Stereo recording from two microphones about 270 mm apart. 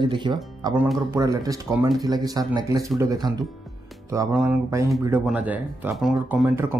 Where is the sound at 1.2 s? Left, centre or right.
Centre.